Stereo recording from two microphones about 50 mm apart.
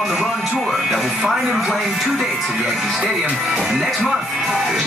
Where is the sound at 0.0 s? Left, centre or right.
Centre.